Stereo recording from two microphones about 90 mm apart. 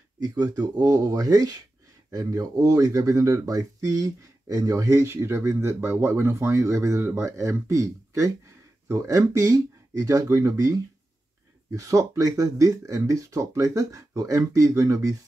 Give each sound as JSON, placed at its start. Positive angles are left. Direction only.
{"t": 0.2, "sound": "speech", "side_deg": -40}